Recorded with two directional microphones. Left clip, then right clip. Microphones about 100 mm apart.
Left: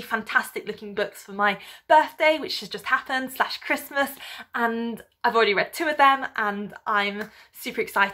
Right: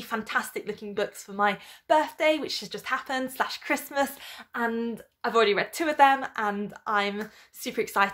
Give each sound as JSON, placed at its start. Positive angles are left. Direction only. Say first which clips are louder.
{"t": 0.3, "sound": "a woman's voice", "louder": "left 5 dB", "side_deg": -35}
{"t": 4.5, "sound": "speech", "louder": "left 3 dB", "side_deg": -25}
{"t": 5.4, "sound": "a woman's voice", "louder": "right 1 dB", "side_deg": -40}